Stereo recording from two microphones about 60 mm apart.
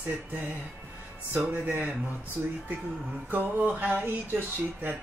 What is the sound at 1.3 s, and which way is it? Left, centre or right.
Speech, centre.